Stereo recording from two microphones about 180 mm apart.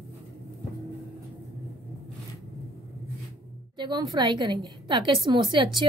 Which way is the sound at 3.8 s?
25° right (ahead or behind).